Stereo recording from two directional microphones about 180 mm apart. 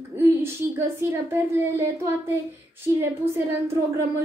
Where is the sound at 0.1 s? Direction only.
15° right (ahead or behind).